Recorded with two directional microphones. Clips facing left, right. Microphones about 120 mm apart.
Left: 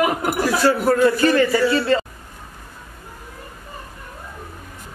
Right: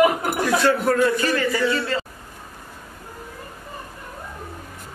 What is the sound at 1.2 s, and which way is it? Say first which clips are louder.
Speech: left 5 dB; 25° left (ahead or behind).